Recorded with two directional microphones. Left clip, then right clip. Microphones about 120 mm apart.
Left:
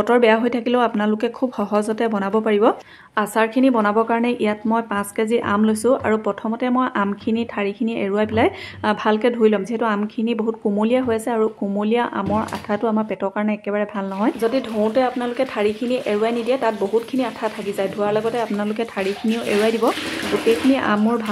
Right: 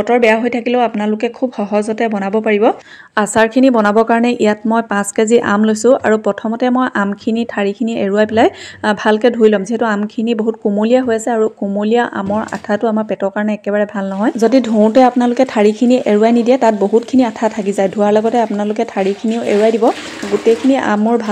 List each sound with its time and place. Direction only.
0.0 s speech: 5° right (ahead or behind)
3.2 s speech: 50° right (ahead or behind)
5.7 s speech: 40° right (ahead or behind)
14.4 s speech: 60° right (ahead or behind)
20.7 s speech: 45° right (ahead or behind)